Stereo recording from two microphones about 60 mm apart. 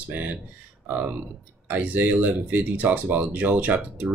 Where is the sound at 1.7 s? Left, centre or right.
Right.